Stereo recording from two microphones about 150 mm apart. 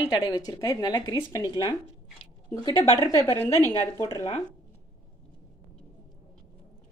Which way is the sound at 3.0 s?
20° left (ahead or behind).